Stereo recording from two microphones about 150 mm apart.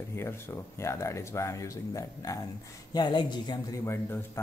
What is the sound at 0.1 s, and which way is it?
Speech, 15° left (ahead or behind).